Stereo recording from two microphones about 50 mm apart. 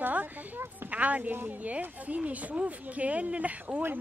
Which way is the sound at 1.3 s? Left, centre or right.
Right.